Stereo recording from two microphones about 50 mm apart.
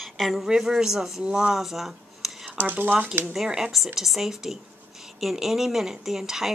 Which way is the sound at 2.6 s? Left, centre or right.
Right.